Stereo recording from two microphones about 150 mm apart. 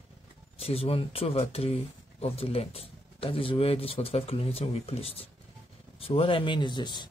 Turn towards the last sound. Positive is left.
turn(degrees=30)  # may be behind; listen again after turning